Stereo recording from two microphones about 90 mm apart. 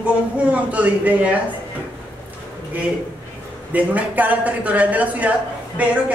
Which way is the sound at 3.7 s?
15° right (ahead or behind).